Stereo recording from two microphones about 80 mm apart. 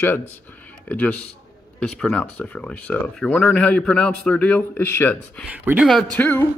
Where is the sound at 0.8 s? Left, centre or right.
Centre.